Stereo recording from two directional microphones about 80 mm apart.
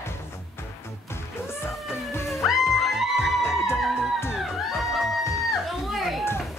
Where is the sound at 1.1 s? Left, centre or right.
Left.